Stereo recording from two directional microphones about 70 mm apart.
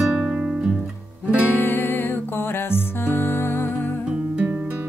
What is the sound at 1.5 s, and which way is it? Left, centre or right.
Music, left.